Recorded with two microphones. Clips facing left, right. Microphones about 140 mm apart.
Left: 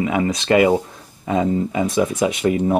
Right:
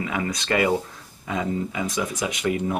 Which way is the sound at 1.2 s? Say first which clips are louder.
Left 7 dB; 35° left (ahead or behind).